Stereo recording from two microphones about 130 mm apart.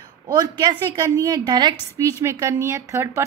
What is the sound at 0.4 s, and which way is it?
A woman's voice, 30° right (ahead or behind).